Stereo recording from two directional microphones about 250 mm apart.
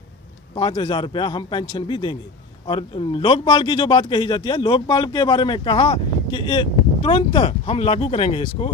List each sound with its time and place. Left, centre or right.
0.6 s a man's voice: centre